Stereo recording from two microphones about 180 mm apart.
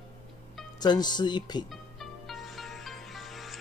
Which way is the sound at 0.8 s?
25° left (ahead or behind).